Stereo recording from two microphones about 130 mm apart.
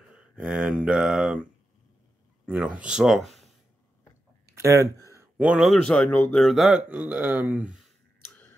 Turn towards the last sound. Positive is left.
turn(degrees=-5)  # may be behind; listen again after turning